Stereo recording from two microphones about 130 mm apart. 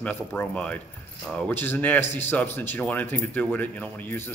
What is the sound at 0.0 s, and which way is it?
Speech, 10° left (ahead or behind).